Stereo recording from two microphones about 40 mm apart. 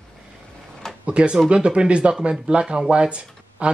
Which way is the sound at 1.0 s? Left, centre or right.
Right.